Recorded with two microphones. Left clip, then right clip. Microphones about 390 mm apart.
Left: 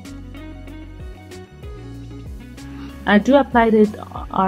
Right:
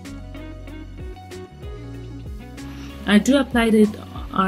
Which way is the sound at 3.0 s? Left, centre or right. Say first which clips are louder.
Left 4 dB; centre.